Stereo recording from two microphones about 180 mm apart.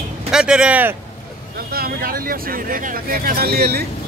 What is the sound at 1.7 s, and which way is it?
Speech, 55° right (ahead or behind).